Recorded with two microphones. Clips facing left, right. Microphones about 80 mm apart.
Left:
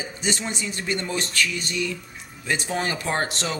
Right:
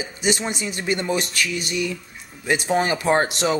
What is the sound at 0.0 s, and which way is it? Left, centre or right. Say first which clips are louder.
A man's voice: right 4 dB; centre.